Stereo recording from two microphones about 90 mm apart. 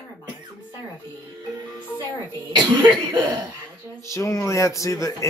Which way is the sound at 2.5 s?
60° right (ahead or behind).